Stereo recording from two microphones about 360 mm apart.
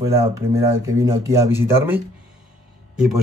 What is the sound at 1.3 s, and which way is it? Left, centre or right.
Speech, centre.